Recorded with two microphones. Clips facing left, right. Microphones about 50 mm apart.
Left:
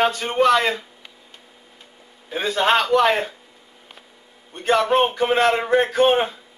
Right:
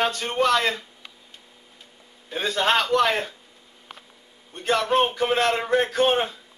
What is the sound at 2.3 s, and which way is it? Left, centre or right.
A man's voice, centre.